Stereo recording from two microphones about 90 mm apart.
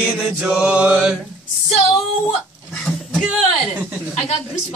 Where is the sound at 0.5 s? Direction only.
10° right (ahead or behind).